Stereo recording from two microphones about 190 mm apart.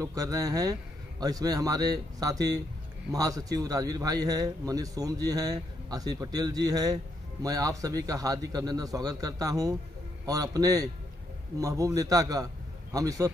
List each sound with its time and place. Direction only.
0.0 s a man's voice: 20° right (ahead or behind)